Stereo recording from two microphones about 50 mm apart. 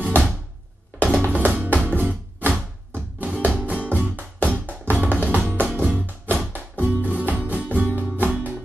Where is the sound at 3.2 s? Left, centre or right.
Right.